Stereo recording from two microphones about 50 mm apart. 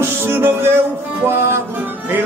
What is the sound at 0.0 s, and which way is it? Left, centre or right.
Music, right.